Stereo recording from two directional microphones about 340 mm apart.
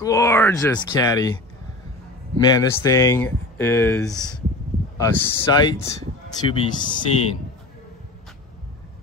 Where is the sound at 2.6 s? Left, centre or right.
Centre.